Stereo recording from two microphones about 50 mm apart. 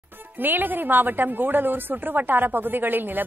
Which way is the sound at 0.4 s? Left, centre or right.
Right.